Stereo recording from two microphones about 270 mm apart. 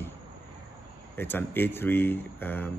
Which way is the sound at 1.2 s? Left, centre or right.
Centre.